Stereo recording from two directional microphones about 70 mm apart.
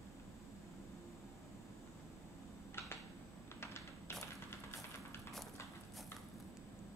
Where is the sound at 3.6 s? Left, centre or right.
Left.